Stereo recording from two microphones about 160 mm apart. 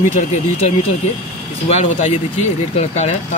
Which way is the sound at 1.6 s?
45° left (ahead or behind).